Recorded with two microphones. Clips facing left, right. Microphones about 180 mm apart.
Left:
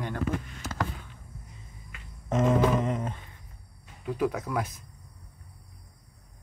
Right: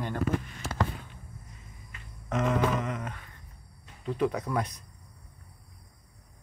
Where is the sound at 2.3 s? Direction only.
30° left (ahead or behind).